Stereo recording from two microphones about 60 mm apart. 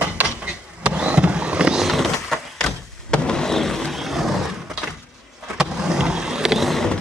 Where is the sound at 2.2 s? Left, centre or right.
Centre.